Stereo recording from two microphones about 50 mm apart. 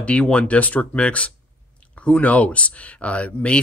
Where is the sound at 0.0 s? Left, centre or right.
Left.